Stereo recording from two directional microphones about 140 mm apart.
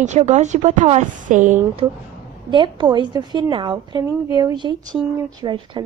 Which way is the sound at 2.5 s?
35° right (ahead or behind).